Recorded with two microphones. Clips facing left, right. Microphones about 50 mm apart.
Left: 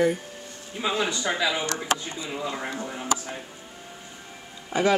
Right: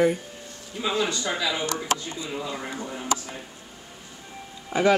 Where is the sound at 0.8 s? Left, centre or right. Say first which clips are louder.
Even; centre.